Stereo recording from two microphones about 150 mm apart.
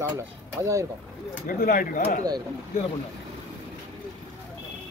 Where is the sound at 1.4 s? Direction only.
65° left (ahead or behind).